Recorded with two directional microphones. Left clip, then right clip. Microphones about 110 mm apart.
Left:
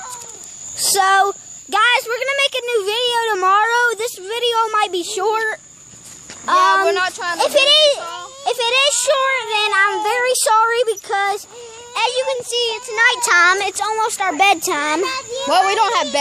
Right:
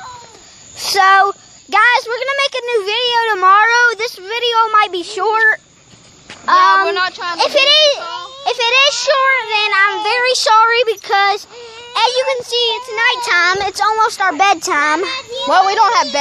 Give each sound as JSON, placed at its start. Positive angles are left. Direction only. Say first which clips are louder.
{"t": 0.7, "sound": "a woman's voice", "louder": "right 4 dB", "side_deg": 5}
{"t": 2.8, "sound": "a child's voice", "louder": "right 4 dB", "side_deg": 10}
{"t": 8.0, "sound": "children playing", "louder": "right 3 dB", "side_deg": -30}
{"t": 8.5, "sound": "a child's voice", "louder": "right 4 dB", "side_deg": 5}
{"t": 9.2, "sound": "a child's voice", "louder": "right 4 dB", "side_deg": 10}
{"t": 11.1, "sound": "speech", "louder": "right 6 dB", "side_deg": -20}
{"t": 11.9, "sound": "speech", "louder": "right 4 dB", "side_deg": -40}
{"t": 12.5, "sound": "a child's voice", "louder": "right 1 dB", "side_deg": 0}
{"t": 13.9, "sound": "speech", "louder": "right 5 dB", "side_deg": -15}
{"t": 14.2, "sound": "a child's voice", "louder": "right 2 dB", "side_deg": 0}
{"t": 15.8, "sound": "a woman's voice", "louder": "right 4 dB", "side_deg": 25}